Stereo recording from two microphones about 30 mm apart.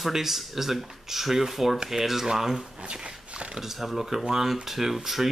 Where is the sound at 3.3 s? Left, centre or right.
Right.